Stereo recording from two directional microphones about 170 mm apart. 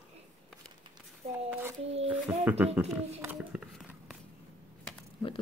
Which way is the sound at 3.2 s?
5° right (ahead or behind).